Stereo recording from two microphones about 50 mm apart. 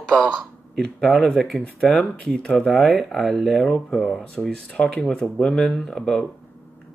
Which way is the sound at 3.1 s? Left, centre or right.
Centre.